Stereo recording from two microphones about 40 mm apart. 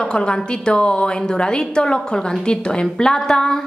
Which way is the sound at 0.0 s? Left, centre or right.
Left.